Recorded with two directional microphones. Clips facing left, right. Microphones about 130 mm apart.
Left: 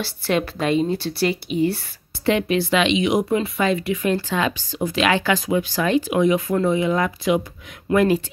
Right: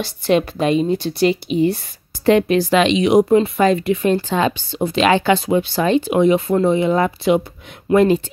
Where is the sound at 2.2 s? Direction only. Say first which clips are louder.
Right 6 dB; 40° right (ahead or behind).